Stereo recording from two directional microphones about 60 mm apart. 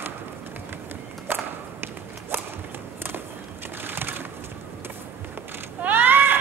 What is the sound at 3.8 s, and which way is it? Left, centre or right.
Pigeon, right.